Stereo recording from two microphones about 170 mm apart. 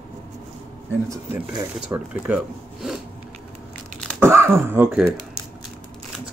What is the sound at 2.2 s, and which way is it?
Speech, 5° right (ahead or behind).